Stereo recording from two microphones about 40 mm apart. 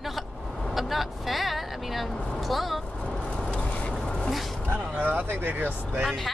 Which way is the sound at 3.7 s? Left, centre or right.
Left.